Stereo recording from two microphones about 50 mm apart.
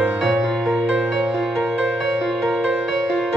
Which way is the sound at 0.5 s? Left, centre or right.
Centre.